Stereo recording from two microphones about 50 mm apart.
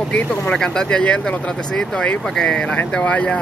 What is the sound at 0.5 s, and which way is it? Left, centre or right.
Speech, centre.